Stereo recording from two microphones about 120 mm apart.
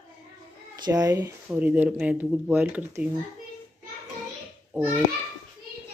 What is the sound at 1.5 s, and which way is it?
Speech, 15° right (ahead or behind).